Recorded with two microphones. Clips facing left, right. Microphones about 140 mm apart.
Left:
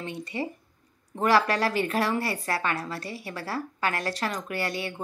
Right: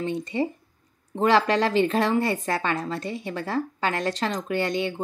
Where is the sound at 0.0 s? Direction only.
25° right (ahead or behind).